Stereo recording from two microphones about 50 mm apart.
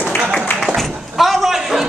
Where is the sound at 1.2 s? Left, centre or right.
Centre.